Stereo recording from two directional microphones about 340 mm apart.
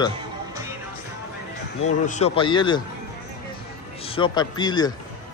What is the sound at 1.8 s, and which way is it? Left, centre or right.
Speech, left.